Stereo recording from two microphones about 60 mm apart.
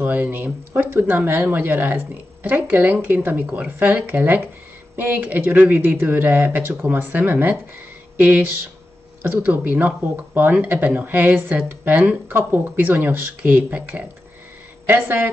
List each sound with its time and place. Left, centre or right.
0.0 s speech: right